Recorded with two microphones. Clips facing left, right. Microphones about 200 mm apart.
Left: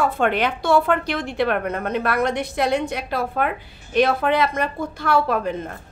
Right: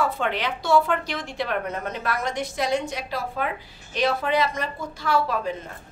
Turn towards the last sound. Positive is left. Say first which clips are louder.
# left 4 dB
turn(degrees=55)  # may be behind; listen again after turning